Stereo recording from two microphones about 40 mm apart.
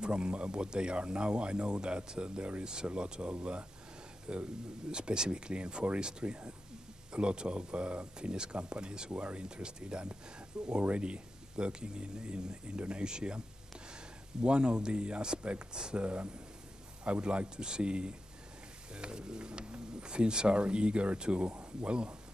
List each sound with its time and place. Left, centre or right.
0.0 s speech: right
9.1 s speech: right
9.4 s speech: right
14.4 s speech: right